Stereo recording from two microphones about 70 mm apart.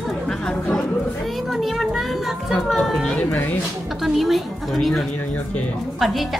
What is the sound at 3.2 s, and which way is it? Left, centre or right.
Speech, left.